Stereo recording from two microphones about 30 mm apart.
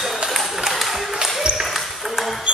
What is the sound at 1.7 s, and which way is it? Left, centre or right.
Ping, centre.